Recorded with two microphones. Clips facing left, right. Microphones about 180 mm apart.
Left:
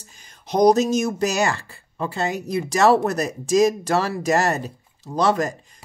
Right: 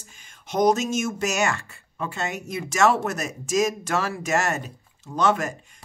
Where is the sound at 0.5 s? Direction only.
35° left (ahead or behind).